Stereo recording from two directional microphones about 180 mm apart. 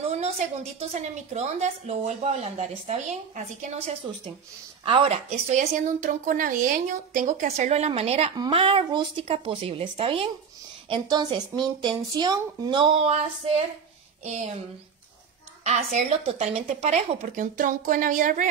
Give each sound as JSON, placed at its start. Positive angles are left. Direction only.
{"t": 0.7, "sound": "speech", "side_deg": -40}
{"t": 4.8, "sound": "speech", "side_deg": -30}
{"t": 5.3, "sound": "speech", "side_deg": -45}
{"t": 15.6, "sound": "speech", "side_deg": -40}